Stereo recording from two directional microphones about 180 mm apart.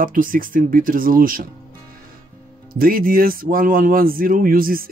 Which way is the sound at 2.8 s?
55° right (ahead or behind).